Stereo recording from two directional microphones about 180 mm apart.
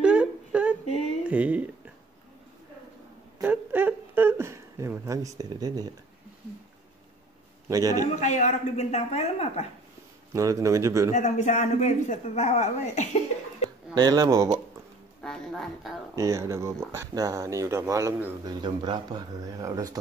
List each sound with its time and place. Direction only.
0.0 s humming: 5° right (ahead or behind)
1.2 s speech: 10° right (ahead or behind)
3.4 s a sound: 10° right (ahead or behind)
7.6 s speech: 20° right (ahead or behind)
8.2 s a man's voice: 45° left (ahead or behind)
10.3 s a man's voice: 20° right (ahead or behind)
11.1 s a man's voice: 45° left (ahead or behind)
13.9 s speech: 20° right (ahead or behind)
15.2 s speech: 5° left (ahead or behind)
16.2 s speech: 15° right (ahead or behind)